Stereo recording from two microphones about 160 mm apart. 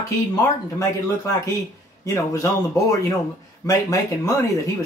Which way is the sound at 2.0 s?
20° left (ahead or behind).